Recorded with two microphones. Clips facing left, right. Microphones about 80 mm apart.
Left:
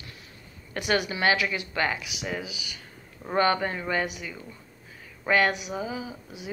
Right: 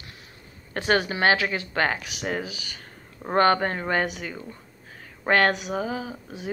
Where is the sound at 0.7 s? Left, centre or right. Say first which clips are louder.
Right 3 dB; right.